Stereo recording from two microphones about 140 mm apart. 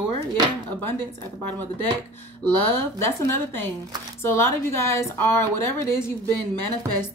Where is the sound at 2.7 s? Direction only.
15° left (ahead or behind).